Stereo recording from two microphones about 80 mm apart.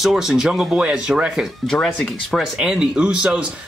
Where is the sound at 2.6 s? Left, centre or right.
Centre.